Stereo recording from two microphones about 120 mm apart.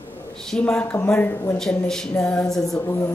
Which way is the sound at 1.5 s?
5° left (ahead or behind).